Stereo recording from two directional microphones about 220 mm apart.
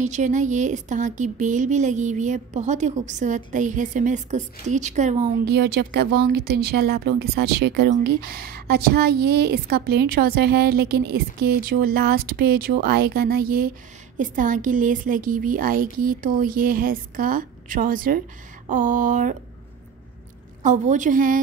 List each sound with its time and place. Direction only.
0.0 s speech: 35° right (ahead or behind)
20.6 s speech: 35° right (ahead or behind)